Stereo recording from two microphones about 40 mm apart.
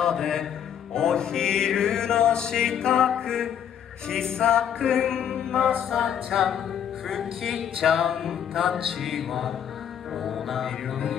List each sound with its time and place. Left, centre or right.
0.0 s mantra: centre
0.9 s music: centre
5.9 s mantra: centre
8.1 s music: centre
8.5 s mantra: centre
10.1 s music: centre